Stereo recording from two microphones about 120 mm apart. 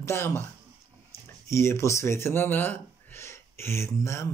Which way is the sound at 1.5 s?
25° left (ahead or behind).